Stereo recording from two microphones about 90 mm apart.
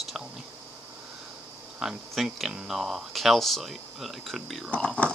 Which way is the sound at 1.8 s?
5° right (ahead or behind).